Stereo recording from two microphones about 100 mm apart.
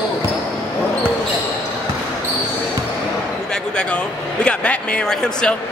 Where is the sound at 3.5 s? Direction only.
10° left (ahead or behind).